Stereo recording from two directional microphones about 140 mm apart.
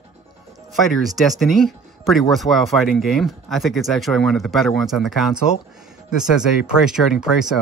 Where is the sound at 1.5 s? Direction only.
Centre (ahead or behind).